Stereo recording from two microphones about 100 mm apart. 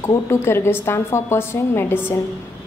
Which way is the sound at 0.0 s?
30° left (ahead or behind).